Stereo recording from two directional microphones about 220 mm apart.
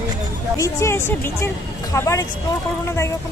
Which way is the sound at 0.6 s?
10° left (ahead or behind).